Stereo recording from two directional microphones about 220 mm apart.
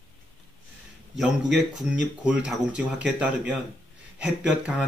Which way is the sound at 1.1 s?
5° right (ahead or behind).